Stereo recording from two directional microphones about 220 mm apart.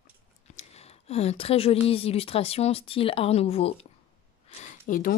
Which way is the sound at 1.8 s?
25° left (ahead or behind).